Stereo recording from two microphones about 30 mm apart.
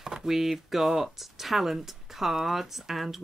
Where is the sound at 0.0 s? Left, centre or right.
Centre.